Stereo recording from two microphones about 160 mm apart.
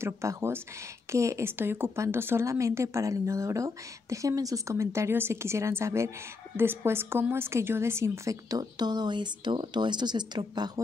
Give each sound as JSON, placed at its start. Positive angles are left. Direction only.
{"t": 0.0, "sound": "a woman's voice", "side_deg": -15}